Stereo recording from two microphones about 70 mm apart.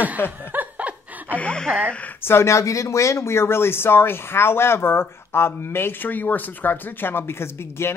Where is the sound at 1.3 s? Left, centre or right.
Centre.